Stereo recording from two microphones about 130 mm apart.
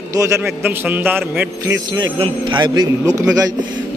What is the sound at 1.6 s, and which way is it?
A man's voice, 30° right (ahead or behind).